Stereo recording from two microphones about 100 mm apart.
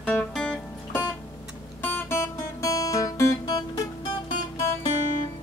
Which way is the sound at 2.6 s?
35° left (ahead or behind).